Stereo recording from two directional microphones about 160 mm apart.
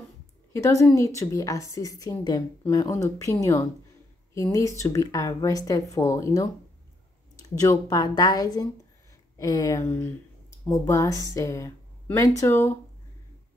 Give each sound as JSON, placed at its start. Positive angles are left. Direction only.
{"t": 0.5, "sound": "a woman's voice", "side_deg": 20}
{"t": 7.6, "sound": "a woman's voice", "side_deg": 20}